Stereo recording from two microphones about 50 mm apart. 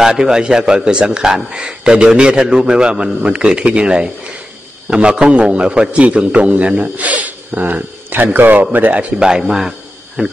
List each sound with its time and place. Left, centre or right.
0.0 s a man's voice: centre; by 9.0 s right
9.2 s a man's voice: centre